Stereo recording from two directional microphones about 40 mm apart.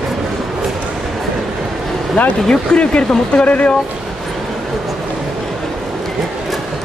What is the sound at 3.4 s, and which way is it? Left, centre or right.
Speech, left.